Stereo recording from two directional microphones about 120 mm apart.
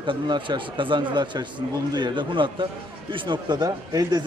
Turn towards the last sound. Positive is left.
turn(degrees=-35)  # may be behind; listen again after turning